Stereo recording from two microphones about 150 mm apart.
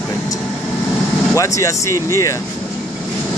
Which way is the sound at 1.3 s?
20° left (ahead or behind).